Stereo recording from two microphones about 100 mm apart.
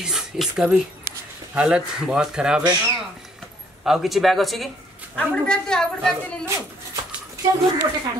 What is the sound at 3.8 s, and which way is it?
A woman's voice, 5° right (ahead or behind).